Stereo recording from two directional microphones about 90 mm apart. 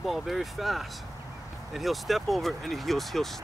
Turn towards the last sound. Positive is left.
turn(degrees=0)  # may be behind; listen again after turning